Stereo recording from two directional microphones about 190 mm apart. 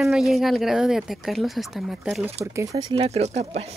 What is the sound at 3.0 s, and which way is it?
Speech, 35° right (ahead or behind).